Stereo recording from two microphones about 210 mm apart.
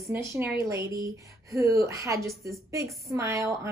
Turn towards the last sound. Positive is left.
turn(degrees=-15)  # may be behind; listen again after turning